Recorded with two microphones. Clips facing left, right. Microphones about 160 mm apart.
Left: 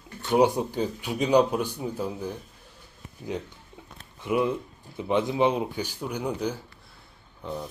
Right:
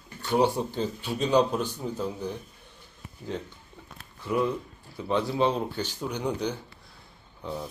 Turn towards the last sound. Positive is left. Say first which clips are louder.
# left 1 dB
turn(degrees=0)  # may be behind; listen again after turning